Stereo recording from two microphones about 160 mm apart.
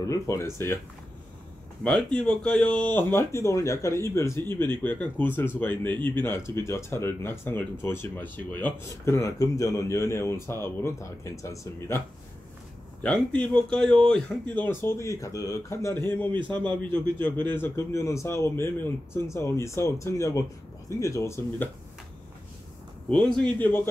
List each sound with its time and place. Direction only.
0.0 s speech: 20° left (ahead or behind)
1.8 s a man's voice: 5° left (ahead or behind)
13.0 s speech: 5° left (ahead or behind)
23.0 s a man's voice: 5° left (ahead or behind)